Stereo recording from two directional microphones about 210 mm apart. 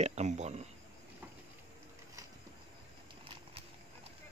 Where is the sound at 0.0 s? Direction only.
30° right (ahead or behind).